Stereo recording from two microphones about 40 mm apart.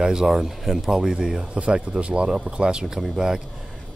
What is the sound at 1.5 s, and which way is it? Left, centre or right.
Speech, right.